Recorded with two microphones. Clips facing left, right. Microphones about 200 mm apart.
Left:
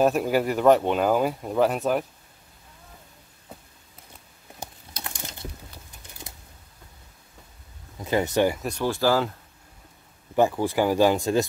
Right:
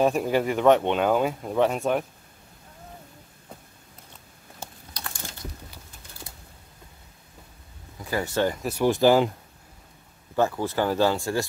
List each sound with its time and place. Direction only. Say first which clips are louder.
0.0 s speech: left 1 dB; centre (ahead or behind)
4.6 s crumpling: left 1 dB; 20° left (ahead or behind)
8.0 s speech: left 3 dB; 20° left (ahead or behind)
8.8 s speech: right 4 dB; 20° right (ahead or behind)
10.3 s speech: left 3 dB; 15° left (ahead or behind)